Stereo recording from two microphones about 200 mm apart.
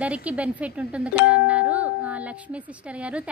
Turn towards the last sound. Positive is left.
turn(degrees=-5)  # may be behind; listen again after turning